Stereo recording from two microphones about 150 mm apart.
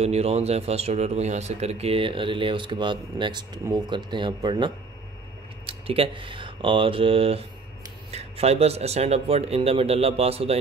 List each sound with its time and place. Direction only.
0.0 s speech: 45° right (ahead or behind)